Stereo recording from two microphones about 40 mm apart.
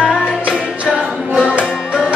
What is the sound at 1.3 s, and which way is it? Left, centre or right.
Music, right.